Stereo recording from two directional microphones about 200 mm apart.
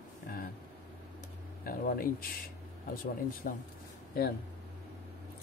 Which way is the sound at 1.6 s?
45° left (ahead or behind).